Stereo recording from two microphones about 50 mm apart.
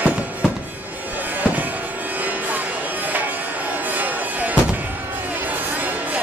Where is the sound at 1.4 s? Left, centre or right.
Right.